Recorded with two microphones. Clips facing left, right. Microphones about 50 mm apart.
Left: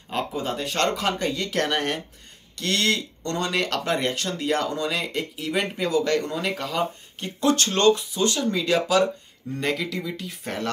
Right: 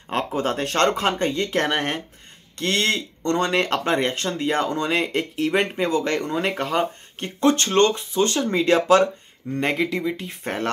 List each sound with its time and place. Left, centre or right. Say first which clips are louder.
0.3 s speech: right 4 dB; right
0.9 s speech: right 3 dB; right